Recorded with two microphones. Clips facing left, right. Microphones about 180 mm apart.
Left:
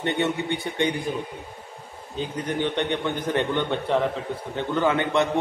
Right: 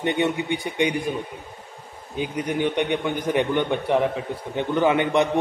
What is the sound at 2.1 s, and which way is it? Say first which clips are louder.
A man's voice: right 2 dB; 15° right (ahead or behind).